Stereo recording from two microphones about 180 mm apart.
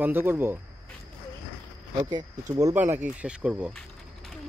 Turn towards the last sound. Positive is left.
turn(degrees=5)  # may be behind; listen again after turning